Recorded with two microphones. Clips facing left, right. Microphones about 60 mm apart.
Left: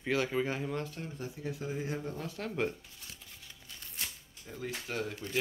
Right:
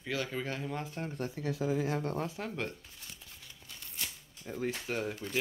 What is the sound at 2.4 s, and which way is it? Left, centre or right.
Speech, centre.